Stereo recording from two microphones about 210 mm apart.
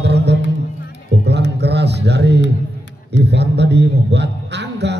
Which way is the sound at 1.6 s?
55° right (ahead or behind).